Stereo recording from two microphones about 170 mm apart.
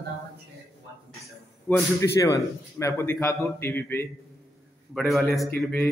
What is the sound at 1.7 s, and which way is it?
A man's voice, 20° left (ahead or behind).